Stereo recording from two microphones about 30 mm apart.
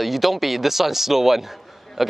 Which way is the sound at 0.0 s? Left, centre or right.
Centre.